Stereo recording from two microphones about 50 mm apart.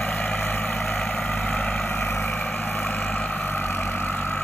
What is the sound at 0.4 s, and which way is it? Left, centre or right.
Vehicle, left.